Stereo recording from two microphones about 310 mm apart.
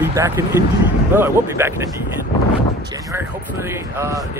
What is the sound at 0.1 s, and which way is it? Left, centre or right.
Speech, centre.